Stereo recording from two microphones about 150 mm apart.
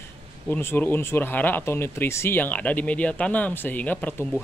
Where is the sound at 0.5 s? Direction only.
15° left (ahead or behind).